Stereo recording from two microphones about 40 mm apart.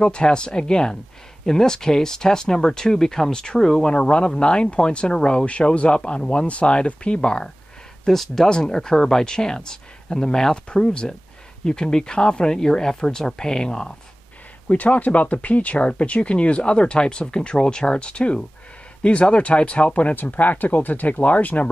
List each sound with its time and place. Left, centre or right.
0.0 s speech: left
3.9 s speech: left
8.0 s speech: centre
8.5 s speech: centre
14.7 s speech: left